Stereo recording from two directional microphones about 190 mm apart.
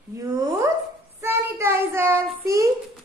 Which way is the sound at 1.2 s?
15° right (ahead or behind).